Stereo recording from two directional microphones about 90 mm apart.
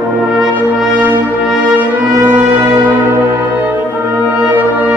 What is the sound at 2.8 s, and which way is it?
Music, 20° right (ahead or behind).